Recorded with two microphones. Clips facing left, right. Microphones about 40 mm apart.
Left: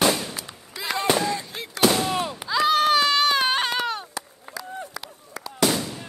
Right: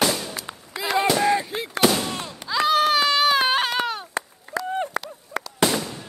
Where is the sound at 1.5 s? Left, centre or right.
Right.